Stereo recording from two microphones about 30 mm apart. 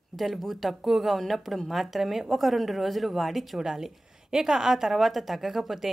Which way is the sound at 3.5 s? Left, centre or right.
Centre.